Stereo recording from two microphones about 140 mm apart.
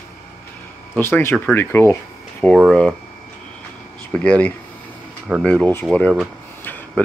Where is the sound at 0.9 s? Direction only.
15° left (ahead or behind).